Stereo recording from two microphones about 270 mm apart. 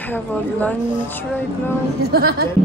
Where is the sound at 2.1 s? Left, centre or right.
Right.